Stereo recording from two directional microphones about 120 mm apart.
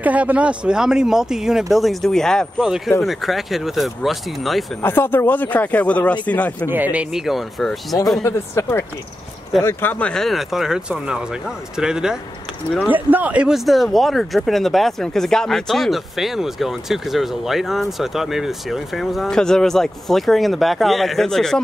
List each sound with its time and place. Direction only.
0.0 s speech: 15° right (ahead or behind)
4.8 s speech: 15° left (ahead or behind)
6.7 s speech: 15° right (ahead or behind)
8.2 s speech: 20° left (ahead or behind); by 21.5 s 5° left (ahead or behind)